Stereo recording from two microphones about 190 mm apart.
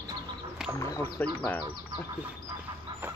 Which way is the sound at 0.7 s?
15° left (ahead or behind).